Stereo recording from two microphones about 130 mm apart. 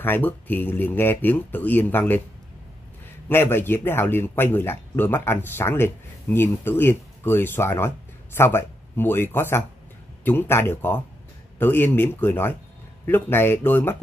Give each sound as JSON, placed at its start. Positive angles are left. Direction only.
{"t": 0.0, "sound": "speech", "side_deg": 15}
{"t": 3.3, "sound": "speech", "side_deg": 15}